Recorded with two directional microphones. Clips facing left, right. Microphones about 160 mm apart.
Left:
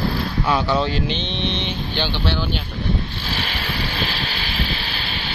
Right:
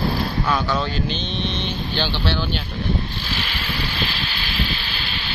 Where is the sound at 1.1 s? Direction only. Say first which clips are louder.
Left 1 dB; 75° left (ahead or behind).